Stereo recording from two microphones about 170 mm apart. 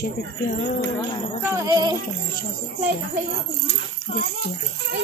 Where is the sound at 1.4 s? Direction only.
20° right (ahead or behind).